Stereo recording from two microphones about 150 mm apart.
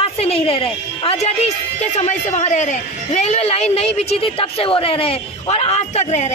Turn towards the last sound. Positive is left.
turn(degrees=50)  # may be behind; listen again after turning